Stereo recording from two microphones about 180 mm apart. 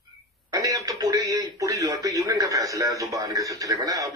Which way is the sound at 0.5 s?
20° right (ahead or behind).